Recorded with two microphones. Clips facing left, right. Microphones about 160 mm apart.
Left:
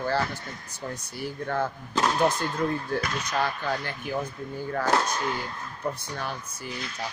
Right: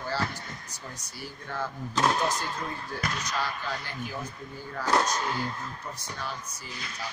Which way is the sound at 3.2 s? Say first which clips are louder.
Left 4 dB; 55° left (ahead or behind).